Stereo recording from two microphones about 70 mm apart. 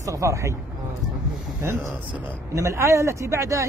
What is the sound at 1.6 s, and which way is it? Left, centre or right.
A man's voice, right.